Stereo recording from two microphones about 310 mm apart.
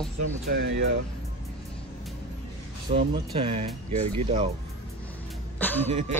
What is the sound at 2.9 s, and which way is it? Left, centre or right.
Speech, centre.